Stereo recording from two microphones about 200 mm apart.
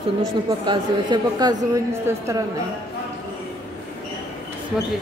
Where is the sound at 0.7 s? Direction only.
20° right (ahead or behind).